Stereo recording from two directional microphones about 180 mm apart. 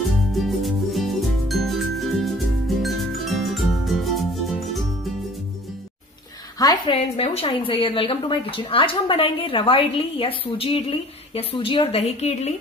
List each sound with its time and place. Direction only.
0.1 s music: centre (ahead or behind)
6.6 s a woman's voice: 20° left (ahead or behind)
7.0 s a woman's voice: 35° left (ahead or behind)